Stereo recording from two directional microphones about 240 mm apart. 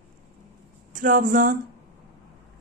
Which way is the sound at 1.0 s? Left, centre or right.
Right.